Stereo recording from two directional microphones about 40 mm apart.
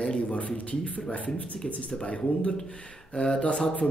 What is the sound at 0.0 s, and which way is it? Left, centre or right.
A man's voice, left.